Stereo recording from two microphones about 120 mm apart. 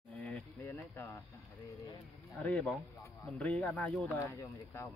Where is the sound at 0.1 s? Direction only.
15° left (ahead or behind).